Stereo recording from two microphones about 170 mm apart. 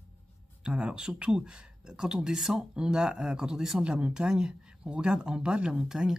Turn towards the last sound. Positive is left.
turn(degrees=-5)  # may be behind; listen again after turning